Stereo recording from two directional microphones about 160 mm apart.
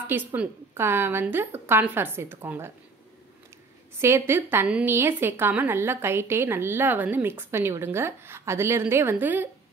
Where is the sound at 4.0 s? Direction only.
15° right (ahead or behind).